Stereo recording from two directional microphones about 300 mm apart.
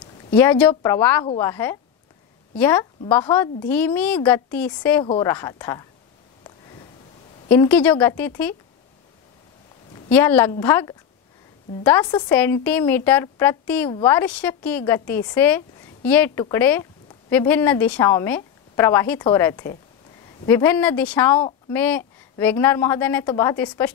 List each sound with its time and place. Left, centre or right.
0.4 s a woman's voice: centre
1.5 s a woman's voice: centre
5.0 s a woman's voice: centre
7.4 s a woman's voice: centre
10.0 s a woman's voice: centre
13.8 s a woman's voice: centre
14.1 s a woman's voice: centre